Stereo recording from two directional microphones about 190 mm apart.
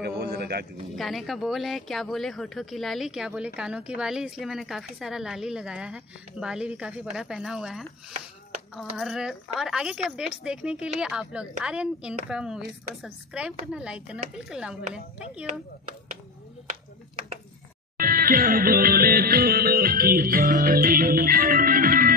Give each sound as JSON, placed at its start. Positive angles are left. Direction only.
{"t": 0.0, "sound": "a sound", "side_deg": -60}
{"t": 0.9, "sound": "speech", "side_deg": 0}
{"t": 17.9, "sound": "music", "side_deg": -50}